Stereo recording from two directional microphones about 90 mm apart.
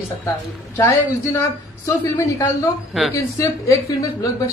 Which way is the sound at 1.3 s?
35° left (ahead or behind).